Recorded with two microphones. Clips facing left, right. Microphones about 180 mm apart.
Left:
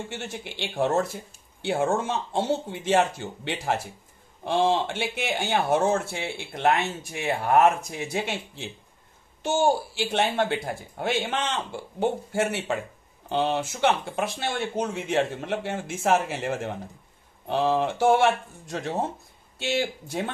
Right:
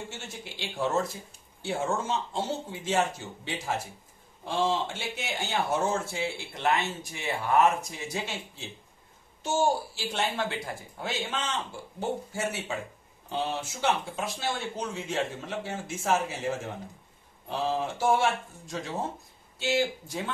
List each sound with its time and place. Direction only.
0.1 s speech: 65° left (ahead or behind)